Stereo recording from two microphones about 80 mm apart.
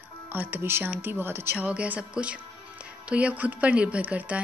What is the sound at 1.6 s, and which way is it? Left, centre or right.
Speech, centre.